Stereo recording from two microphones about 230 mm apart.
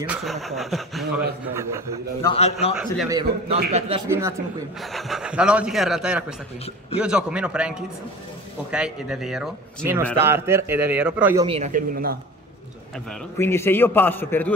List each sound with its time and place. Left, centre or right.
0.1 s speech: centre
1.5 s a man's voice: centre
2.2 s a man's voice: left
2.7 s speech: centre
3.1 s a man's voice: right
4.1 s a man's voice: centre
4.7 s a man's voice: centre
11.4 s speech: right
12.9 s a man's voice: centre